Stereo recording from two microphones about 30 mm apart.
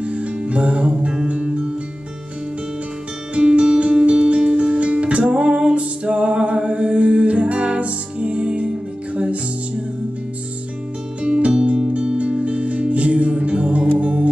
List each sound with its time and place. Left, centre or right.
0.0 s music: right
3.3 s music: right
11.2 s music: right